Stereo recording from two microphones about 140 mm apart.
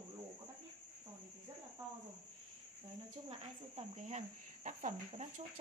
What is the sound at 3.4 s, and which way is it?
Cricket, 55° right (ahead or behind).